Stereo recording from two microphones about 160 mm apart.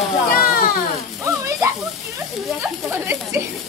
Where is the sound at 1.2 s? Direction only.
20° right (ahead or behind).